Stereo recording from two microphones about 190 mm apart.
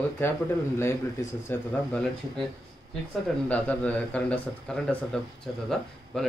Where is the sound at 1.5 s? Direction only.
10° left (ahead or behind).